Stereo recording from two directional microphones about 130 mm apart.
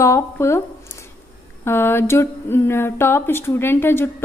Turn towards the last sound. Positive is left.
turn(degrees=20)  # may be behind; listen again after turning